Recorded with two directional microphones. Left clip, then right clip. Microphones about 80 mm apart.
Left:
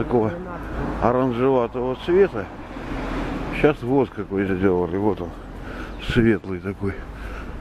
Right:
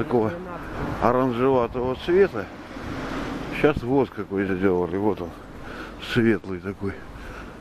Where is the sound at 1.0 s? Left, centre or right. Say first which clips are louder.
Left 1 dB; right.